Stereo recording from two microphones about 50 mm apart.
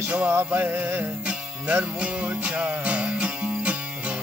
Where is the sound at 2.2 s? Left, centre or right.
Right.